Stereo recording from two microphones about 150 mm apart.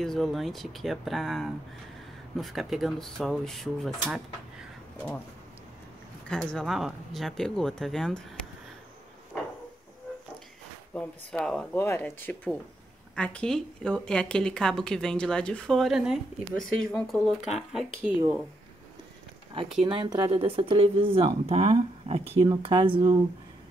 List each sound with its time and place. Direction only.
0.0 s a woman's voice: centre (ahead or behind)
6.2 s a woman's voice: 5° left (ahead or behind)
11.0 s a woman's voice: 5° left (ahead or behind)
19.9 s speech: 30° right (ahead or behind)
22.5 s speech: 30° right (ahead or behind)